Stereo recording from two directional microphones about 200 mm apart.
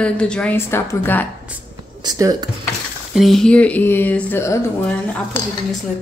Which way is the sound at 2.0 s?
20° right (ahead or behind).